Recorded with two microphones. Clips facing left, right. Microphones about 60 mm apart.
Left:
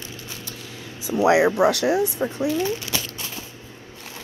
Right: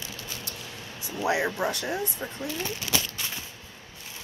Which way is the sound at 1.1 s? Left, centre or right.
Left.